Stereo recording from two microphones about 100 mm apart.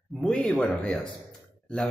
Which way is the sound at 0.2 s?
5° left (ahead or behind).